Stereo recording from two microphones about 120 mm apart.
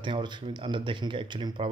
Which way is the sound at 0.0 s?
40° right (ahead or behind).